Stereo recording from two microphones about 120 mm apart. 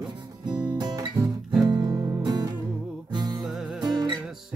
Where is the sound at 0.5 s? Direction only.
35° right (ahead or behind).